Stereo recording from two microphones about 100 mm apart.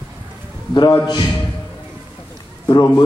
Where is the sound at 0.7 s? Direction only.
50° left (ahead or behind).